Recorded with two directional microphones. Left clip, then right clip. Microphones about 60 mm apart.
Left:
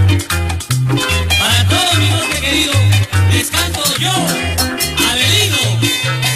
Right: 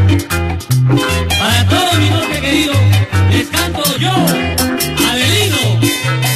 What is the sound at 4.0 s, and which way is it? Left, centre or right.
Music, centre.